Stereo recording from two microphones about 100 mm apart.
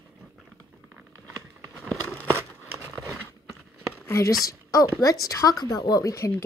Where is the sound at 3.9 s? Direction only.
30° left (ahead or behind).